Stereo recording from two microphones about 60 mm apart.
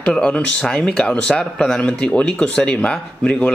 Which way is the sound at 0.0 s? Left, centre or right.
Centre.